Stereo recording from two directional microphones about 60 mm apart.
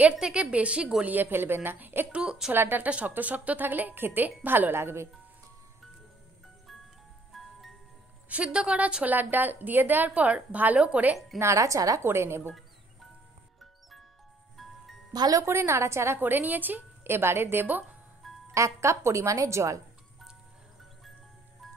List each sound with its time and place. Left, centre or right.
0.2 s a woman's voice: centre
1.0 s a woman's voice: right
2.1 s a woman's voice: centre
2.5 s a woman's voice: right
7.3 s music: centre
8.3 s a woman's voice: centre
11.3 s speech: right
12.0 s a woman's voice: right
14.6 s music: centre
15.4 s a woman's voice: right
16.2 s a woman's voice: right
18.5 s speech: right